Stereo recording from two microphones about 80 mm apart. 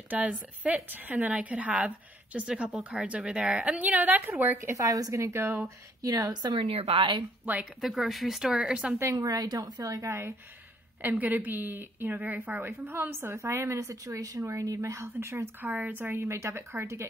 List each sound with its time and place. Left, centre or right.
0.1 s a woman's voice: centre
4.7 s speech: right
6.0 s a woman's voice: right
7.8 s speech: centre
8.9 s speech: right
9.3 s speech: right
9.8 s speech: right
11.0 s a woman's voice: right
15.6 s speech: right